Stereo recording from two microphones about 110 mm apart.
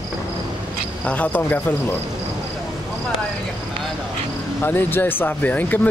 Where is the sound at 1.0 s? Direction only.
15° left (ahead or behind).